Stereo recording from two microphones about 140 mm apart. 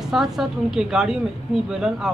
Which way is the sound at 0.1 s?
Centre (ahead or behind).